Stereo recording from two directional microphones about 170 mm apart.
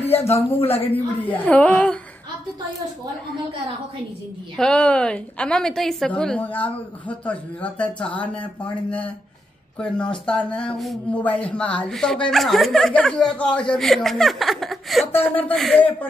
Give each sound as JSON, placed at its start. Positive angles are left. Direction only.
{"t": 0.1, "sound": "speech", "side_deg": 35}
{"t": 1.4, "sound": "speech", "side_deg": 10}
{"t": 4.6, "sound": "speech", "side_deg": 5}
{"t": 9.8, "sound": "speech", "side_deg": 5}